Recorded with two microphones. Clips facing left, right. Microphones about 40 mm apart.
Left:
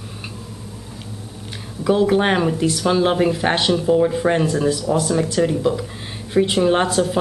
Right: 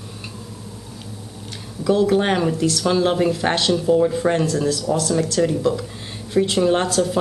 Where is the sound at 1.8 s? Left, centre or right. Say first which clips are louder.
Left 1 dB; centre.